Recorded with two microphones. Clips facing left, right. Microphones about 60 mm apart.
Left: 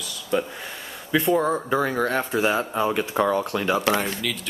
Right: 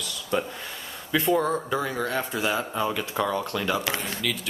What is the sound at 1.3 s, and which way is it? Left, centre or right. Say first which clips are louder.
Speech: left 2 dB; centre.